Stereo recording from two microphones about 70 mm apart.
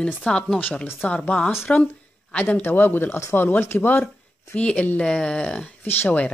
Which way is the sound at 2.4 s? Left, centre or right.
Left.